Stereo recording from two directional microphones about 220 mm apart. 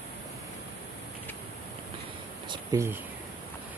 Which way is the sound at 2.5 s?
15° right (ahead or behind).